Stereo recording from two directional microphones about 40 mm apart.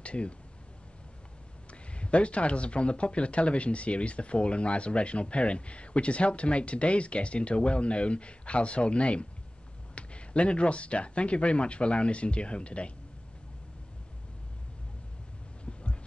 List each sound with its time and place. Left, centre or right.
0.0 s speech: left
1.7 s speech: left
15.6 s a sound: left